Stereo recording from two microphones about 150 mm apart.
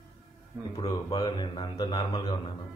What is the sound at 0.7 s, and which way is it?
Speech, 35° left (ahead or behind).